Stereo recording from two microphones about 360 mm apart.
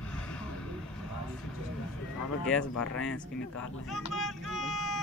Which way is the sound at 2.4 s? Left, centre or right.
Centre.